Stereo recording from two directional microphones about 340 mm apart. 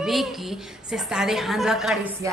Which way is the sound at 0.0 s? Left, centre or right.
Centre.